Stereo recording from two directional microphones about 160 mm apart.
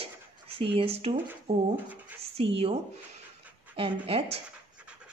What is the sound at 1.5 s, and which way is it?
Speech, 80° right.